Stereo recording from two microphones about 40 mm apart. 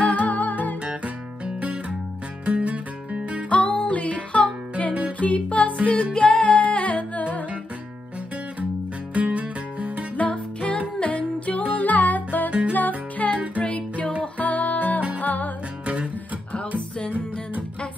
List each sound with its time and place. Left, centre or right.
0.0 s music: left
0.8 s music: right
3.4 s music: left
9.1 s music: right
10.1 s music: left
13.6 s music: left
15.8 s music: right